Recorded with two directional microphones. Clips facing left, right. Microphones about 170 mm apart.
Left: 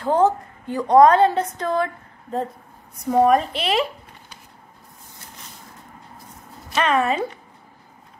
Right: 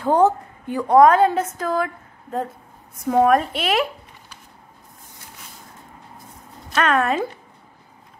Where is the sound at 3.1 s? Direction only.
Centre (ahead or behind).